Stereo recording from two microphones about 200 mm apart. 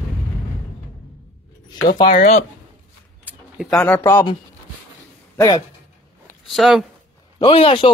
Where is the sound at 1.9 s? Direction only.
40° left (ahead or behind).